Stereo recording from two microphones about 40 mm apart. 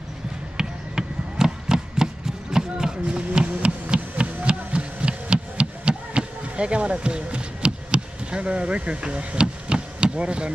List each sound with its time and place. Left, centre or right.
0.6 s basketball bounce: centre
3.4 s a sound: right
9.0 s vehicle: right